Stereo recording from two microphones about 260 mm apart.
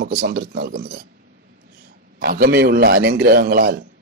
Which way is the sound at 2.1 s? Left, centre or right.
Right.